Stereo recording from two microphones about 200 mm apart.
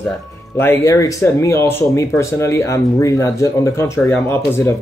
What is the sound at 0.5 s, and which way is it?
A man's voice, 15° left (ahead or behind).